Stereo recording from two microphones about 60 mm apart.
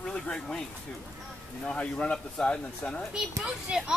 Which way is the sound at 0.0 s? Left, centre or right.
Centre.